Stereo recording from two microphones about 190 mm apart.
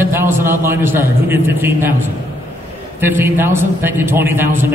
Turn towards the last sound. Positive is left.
turn(degrees=-10)  # may be behind; listen again after turning